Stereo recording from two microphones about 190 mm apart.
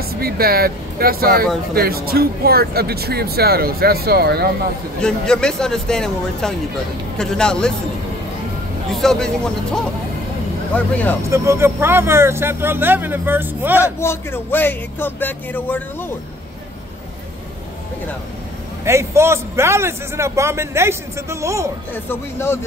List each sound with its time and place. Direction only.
0.1 s speech: 55° right (ahead or behind)
5.0 s a man's voice: 5° left (ahead or behind)
8.9 s a man's voice: centre (ahead or behind)
10.7 s speech: 10° left (ahead or behind)
11.2 s a man's voice: 15° right (ahead or behind)
13.9 s speech: 10° left (ahead or behind)
18.9 s a man's voice: 15° right (ahead or behind)
21.9 s speech: 10° left (ahead or behind)